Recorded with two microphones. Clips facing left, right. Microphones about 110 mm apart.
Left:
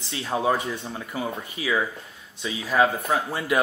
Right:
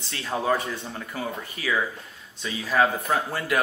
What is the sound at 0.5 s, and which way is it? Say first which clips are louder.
Speech: right 1 dB; 10° left (ahead or behind).